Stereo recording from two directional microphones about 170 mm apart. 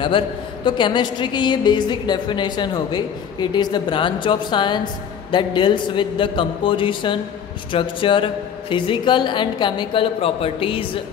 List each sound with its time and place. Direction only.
0.7 s a woman's voice: 30° left (ahead or behind)